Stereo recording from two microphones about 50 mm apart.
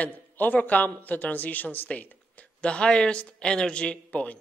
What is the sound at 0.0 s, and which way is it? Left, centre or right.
Speech, left.